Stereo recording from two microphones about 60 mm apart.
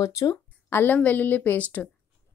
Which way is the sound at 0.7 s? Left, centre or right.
Left.